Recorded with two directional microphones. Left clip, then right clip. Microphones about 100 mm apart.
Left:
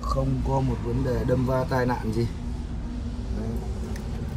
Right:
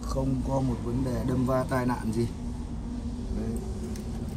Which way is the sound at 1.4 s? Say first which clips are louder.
Left 2 dB; 30° right (ahead or behind).